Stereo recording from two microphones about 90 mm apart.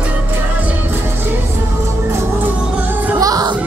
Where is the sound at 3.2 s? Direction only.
45° right (ahead or behind).